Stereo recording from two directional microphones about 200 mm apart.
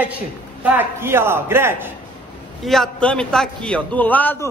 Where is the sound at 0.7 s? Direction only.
10° right (ahead or behind).